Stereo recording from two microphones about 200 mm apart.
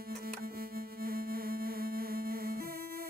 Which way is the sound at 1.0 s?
50° right (ahead or behind).